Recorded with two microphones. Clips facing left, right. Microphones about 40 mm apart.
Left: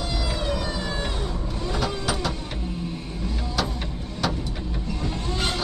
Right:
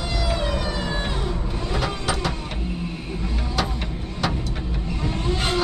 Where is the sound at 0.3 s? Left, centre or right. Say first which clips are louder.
Right 3 dB; centre.